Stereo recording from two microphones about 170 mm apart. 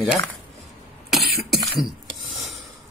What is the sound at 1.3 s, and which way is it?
Cough, centre (ahead or behind).